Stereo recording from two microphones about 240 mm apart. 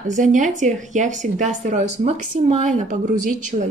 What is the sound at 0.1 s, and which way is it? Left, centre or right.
Speech, right.